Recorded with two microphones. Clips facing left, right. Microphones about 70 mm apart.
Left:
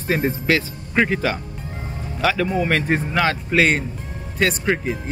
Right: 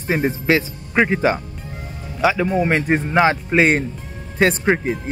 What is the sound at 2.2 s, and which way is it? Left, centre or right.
Speech, centre.